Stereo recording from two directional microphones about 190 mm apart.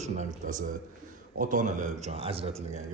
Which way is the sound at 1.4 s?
45° right (ahead or behind).